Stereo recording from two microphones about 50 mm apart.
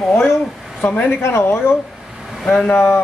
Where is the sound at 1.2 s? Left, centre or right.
Left.